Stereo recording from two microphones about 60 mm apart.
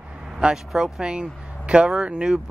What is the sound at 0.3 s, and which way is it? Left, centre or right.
Speech, centre.